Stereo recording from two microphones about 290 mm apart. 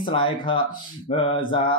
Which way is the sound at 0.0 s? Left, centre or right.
Centre.